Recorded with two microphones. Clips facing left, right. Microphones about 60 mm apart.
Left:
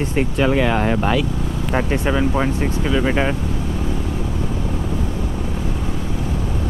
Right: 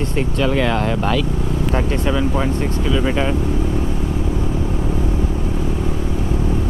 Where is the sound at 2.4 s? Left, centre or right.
Centre.